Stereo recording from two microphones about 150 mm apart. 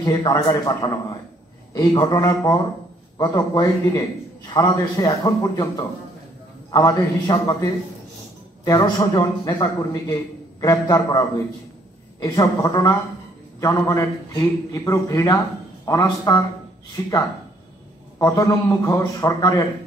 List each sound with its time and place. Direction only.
0.0 s a man's voice: 25° left (ahead or behind)
8.6 s a man's voice: 25° left (ahead or behind)
18.2 s a man's voice: 20° left (ahead or behind)